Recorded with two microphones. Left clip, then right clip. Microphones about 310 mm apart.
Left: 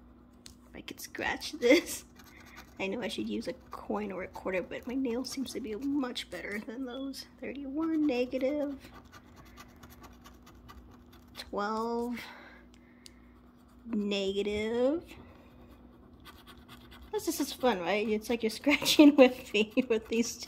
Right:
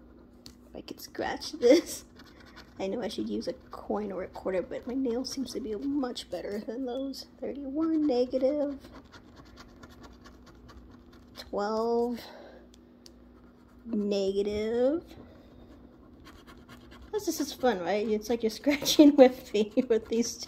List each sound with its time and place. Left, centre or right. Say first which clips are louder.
0.8 s speech: even; centre
11.3 s a sound: right 2 dB; centre
11.7 s speech: right 9 dB; centre
12.1 s a sound: right 2 dB; centre
13.8 s speech: right 3 dB; centre
17.1 s speech: right 2 dB; centre